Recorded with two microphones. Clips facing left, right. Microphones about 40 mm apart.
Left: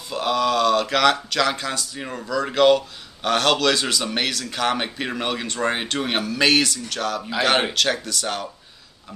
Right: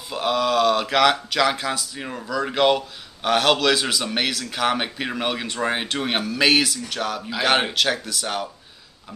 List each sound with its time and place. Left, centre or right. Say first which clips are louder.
0.1 s speech: even; centre
7.2 s speech: left 1 dB; centre